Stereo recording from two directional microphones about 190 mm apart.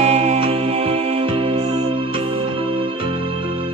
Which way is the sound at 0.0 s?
35° right (ahead or behind).